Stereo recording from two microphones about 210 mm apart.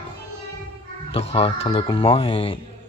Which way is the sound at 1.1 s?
30° left (ahead or behind).